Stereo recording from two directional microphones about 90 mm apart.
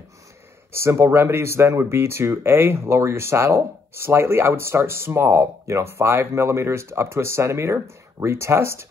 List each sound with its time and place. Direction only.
0.7 s speech: 30° right (ahead or behind)